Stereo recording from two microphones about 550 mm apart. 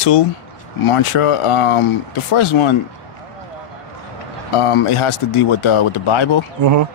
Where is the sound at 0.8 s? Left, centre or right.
Left.